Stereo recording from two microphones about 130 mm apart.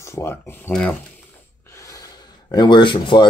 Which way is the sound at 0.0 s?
20° left (ahead or behind).